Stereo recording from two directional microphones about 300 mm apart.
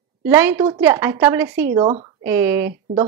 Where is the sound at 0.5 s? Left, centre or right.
Centre.